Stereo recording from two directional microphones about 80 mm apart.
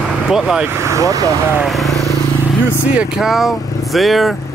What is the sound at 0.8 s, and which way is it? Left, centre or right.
Speech, right.